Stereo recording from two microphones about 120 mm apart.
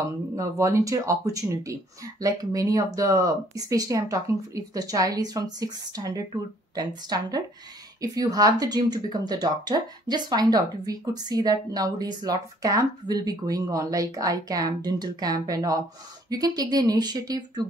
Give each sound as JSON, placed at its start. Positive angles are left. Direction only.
{"t": 0.0, "sound": "speech", "side_deg": -25}